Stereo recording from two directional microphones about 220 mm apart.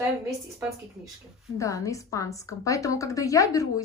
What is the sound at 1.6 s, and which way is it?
A woman's voice, 15° left (ahead or behind).